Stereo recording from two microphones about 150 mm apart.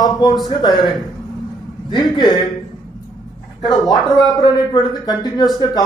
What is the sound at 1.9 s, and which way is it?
Speech, 30° left (ahead or behind).